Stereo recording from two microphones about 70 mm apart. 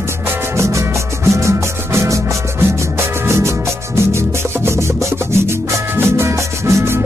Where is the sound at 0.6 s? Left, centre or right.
Right.